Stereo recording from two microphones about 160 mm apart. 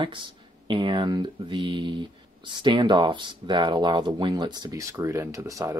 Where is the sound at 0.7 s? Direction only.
30° right (ahead or behind).